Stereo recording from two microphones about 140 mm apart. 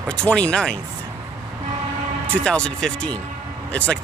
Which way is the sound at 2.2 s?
5° left (ahead or behind).